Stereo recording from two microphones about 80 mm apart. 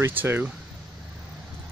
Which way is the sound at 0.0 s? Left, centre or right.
Right.